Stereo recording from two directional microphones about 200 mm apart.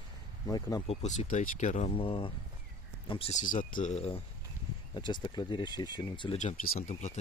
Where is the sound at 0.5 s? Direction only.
20° left (ahead or behind).